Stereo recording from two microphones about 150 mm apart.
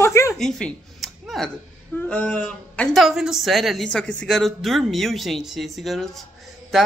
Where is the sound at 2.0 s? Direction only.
10° left (ahead or behind).